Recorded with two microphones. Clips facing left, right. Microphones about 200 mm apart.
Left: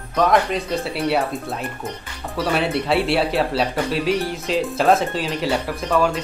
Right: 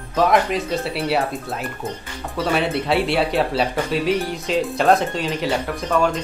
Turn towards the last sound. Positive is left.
turn(degrees=0)  # may be behind; listen again after turning